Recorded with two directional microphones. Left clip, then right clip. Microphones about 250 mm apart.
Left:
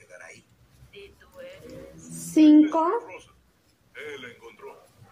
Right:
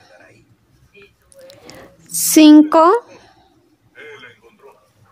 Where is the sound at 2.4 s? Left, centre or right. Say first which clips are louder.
Right 9 dB; right.